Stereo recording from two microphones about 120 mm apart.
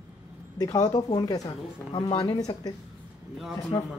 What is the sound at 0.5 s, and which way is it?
Speech, 30° left (ahead or behind).